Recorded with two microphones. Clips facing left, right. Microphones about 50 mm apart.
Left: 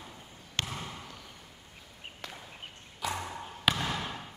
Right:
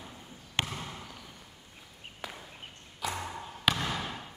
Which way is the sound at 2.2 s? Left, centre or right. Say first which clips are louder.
Right 3 dB; centre.